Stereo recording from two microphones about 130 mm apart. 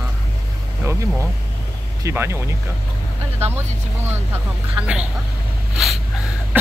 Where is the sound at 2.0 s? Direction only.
20° right (ahead or behind).